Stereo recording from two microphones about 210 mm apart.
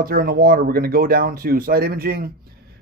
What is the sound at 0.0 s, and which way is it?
Speech, 45° right (ahead or behind).